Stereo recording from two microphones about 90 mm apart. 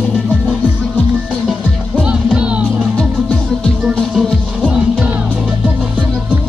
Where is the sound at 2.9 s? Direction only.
10° left (ahead or behind).